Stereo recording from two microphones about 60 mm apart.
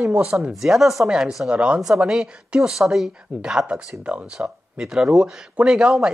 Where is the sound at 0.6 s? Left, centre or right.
Centre.